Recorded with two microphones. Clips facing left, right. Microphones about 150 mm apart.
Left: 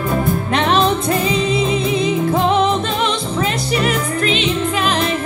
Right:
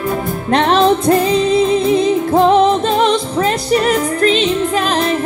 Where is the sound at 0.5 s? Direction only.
35° right (ahead or behind).